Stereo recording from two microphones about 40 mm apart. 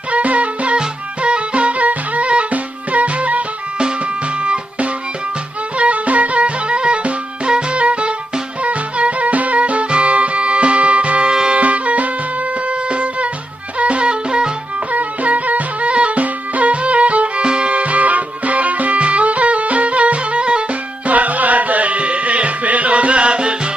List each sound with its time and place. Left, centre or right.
0.1 s music: right
14.9 s music: right
21.1 s music: right